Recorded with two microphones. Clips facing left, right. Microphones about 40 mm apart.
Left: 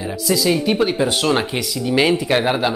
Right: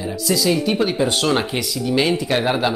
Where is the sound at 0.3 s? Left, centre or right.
Centre.